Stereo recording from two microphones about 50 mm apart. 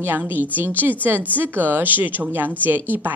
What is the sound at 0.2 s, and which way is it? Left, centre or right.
A woman's voice, right.